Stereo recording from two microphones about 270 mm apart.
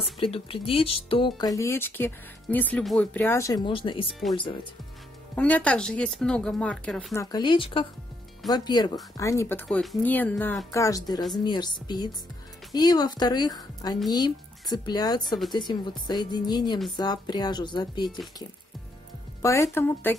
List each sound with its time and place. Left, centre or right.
0.2 s speech: centre
5.3 s speech: centre
7.2 s speech: centre
19.4 s speech: centre